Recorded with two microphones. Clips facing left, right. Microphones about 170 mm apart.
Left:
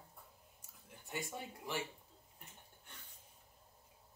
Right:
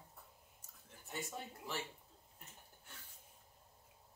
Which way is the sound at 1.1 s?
15° left (ahead or behind).